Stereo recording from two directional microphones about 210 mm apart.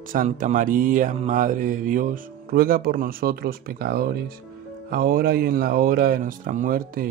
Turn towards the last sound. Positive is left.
turn(degrees=-40)  # may be behind; listen again after turning